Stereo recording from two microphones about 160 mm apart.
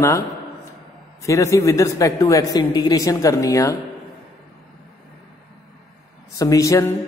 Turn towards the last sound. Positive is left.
turn(degrees=20)  # may be behind; listen again after turning